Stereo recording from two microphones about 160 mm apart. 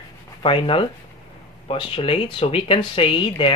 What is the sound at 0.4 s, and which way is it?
Speech, 35° left (ahead or behind).